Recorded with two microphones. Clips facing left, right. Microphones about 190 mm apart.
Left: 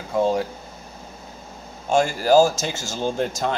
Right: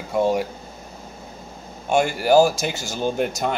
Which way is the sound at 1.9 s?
20° right (ahead or behind).